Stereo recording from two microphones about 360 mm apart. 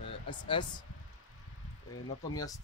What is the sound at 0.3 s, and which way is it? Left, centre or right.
Speech, centre.